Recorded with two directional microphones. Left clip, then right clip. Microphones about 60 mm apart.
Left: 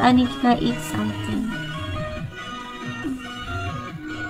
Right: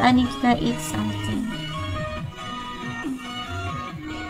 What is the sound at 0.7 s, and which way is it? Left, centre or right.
Speech, right.